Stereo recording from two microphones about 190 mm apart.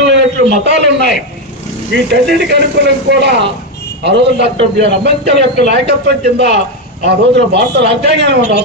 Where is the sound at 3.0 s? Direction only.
65° right (ahead or behind).